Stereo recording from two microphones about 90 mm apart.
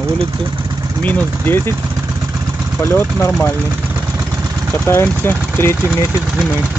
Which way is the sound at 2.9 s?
25° left (ahead or behind).